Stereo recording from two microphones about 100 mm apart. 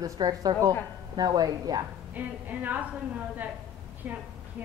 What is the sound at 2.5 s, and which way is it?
Speech, 15° right (ahead or behind).